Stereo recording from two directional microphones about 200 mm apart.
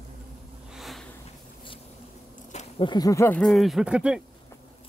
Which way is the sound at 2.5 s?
35° left (ahead or behind).